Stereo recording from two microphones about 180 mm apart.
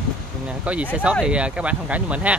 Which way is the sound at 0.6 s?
5° right (ahead or behind).